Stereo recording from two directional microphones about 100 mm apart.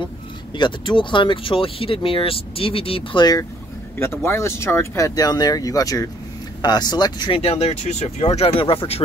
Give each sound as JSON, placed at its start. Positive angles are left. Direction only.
{"t": 0.6, "sound": "speech", "side_deg": 50}
{"t": 4.0, "sound": "speech", "side_deg": 25}
{"t": 7.3, "sound": "speech", "side_deg": 80}